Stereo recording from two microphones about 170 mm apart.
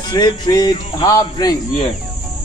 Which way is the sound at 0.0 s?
25° left (ahead or behind).